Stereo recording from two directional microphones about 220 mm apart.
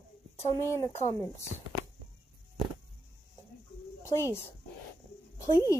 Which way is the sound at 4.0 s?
15° left (ahead or behind).